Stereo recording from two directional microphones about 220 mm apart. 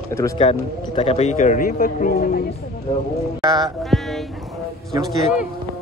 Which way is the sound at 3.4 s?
15° right (ahead or behind).